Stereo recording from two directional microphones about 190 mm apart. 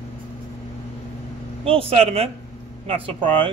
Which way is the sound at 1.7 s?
30° right (ahead or behind).